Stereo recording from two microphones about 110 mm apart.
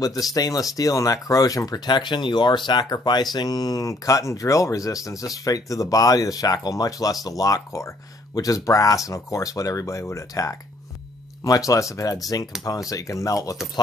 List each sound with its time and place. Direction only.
0.0 s speech: 35° left (ahead or behind)